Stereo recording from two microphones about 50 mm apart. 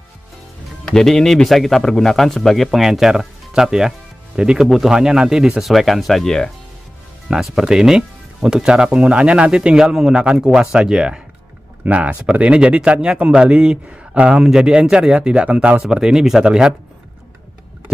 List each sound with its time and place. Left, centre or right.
0.8 s a man's voice: centre
11.8 s speech: right
14.4 s speech: centre
15.8 s speech: centre